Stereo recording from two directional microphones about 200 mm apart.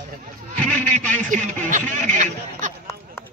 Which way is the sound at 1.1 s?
40° right (ahead or behind).